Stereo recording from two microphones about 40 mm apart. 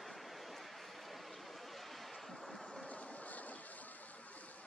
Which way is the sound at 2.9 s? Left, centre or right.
Left.